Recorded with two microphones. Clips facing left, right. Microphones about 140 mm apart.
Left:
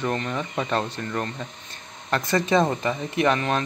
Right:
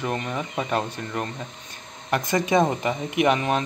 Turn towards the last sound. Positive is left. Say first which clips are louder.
# right 1 dB
turn(degrees=-15)  # may be behind; listen again after turning